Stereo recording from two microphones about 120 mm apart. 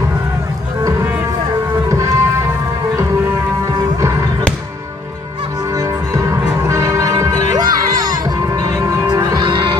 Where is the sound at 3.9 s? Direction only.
25° right (ahead or behind).